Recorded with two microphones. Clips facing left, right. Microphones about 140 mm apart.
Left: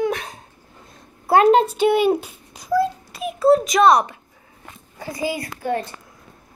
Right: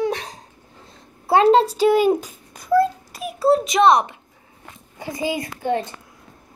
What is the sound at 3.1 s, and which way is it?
A child's voice, 30° right (ahead or behind).